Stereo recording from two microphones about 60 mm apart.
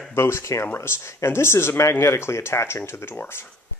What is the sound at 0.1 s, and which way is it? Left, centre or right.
Speech, left.